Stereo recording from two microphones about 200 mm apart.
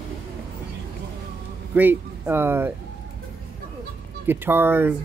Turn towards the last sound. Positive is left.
turn(degrees=-10)  # may be behind; listen again after turning